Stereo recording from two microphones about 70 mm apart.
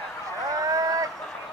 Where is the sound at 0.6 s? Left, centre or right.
Right.